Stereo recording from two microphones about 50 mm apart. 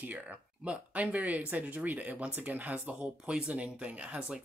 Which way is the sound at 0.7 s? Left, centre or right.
Right.